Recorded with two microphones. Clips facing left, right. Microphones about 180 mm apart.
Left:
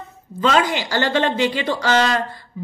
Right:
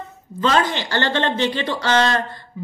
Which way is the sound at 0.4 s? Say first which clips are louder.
Left 1 dB; 10° left (ahead or behind).